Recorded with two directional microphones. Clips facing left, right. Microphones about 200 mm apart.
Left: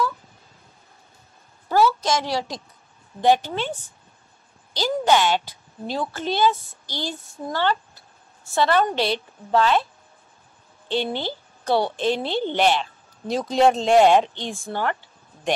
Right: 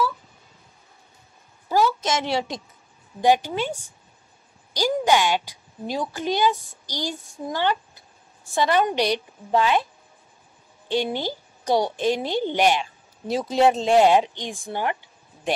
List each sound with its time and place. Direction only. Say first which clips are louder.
1.7 s a sound: left 2 dB; 20° right (ahead or behind)
3.2 s a woman's voice: even; 10° right (ahead or behind)
10.9 s a woman's voice: right 1 dB; 10° right (ahead or behind)